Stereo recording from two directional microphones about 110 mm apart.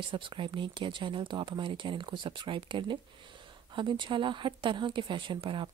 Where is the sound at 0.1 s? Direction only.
50° right (ahead or behind).